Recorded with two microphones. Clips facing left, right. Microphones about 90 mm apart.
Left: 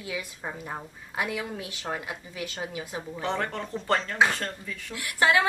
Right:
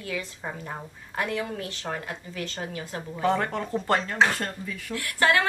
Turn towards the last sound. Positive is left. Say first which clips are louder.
# even
turn(degrees=15)  # may be behind; listen again after turning